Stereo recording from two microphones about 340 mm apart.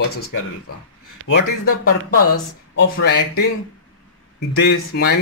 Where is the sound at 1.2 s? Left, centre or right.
Left.